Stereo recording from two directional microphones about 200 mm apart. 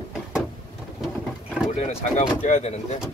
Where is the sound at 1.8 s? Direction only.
35° left (ahead or behind).